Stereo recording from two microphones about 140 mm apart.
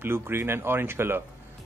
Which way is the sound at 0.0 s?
15° right (ahead or behind).